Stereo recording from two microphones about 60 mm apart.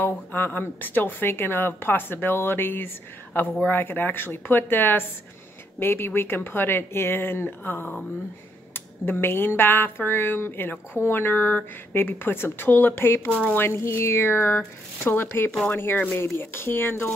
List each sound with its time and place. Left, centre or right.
0.0 s speech: left